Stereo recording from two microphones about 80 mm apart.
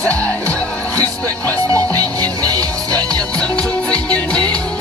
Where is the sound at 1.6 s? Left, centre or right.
Right.